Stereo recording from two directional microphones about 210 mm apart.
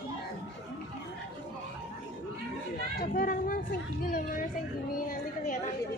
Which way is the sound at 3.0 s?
45° left (ahead or behind).